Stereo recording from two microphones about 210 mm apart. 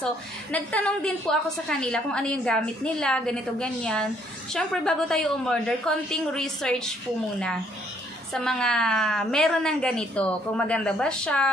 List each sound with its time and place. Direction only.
0.0 s a woman's voice: 5° left (ahead or behind)
8.3 s a woman's voice: 5° left (ahead or behind)